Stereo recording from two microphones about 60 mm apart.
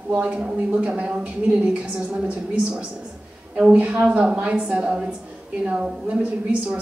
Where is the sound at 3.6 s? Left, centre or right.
Right.